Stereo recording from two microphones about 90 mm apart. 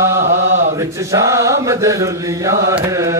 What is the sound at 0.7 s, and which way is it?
Mantra, 35° right (ahead or behind).